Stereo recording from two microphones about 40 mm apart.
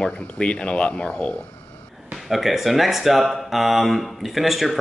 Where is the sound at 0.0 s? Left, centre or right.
Left.